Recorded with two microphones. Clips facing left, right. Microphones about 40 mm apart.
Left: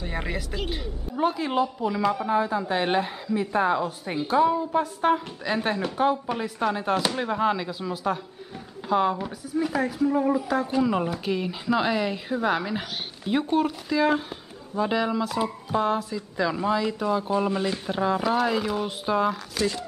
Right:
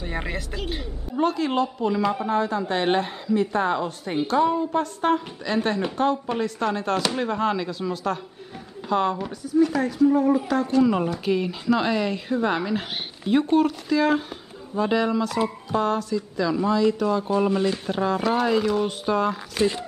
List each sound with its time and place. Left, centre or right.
0.0 s a woman's voice: centre
1.2 s speech: centre
1.9 s a woman's voice: centre
19.5 s speech: right